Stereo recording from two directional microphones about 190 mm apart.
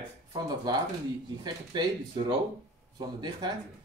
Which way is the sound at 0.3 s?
20° right (ahead or behind).